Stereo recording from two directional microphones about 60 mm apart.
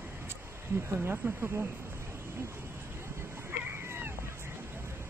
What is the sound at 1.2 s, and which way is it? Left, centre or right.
Speech, right.